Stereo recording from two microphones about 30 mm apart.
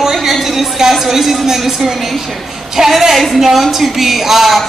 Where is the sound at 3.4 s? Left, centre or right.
Centre.